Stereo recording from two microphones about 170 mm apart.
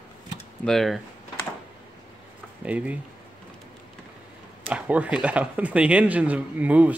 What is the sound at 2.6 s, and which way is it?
Speech, 10° right (ahead or behind).